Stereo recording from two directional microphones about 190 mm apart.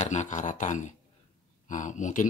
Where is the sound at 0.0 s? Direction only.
40° left (ahead or behind).